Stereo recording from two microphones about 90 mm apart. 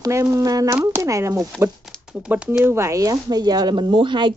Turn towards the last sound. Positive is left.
turn(degrees=-65)  # may be behind; listen again after turning